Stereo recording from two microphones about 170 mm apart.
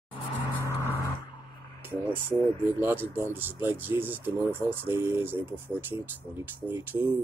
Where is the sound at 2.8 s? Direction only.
10° right (ahead or behind).